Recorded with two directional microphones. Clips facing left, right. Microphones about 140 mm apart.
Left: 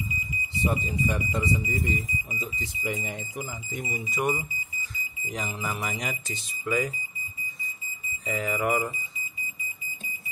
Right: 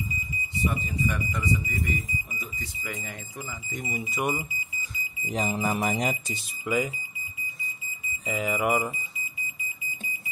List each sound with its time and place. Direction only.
0.7 s speech: 30° left (ahead or behind)
3.7 s speech: centre (ahead or behind)
5.3 s music: 35° right (ahead or behind)
6.2 s speech: 10° right (ahead or behind)
8.3 s speech: 10° right (ahead or behind)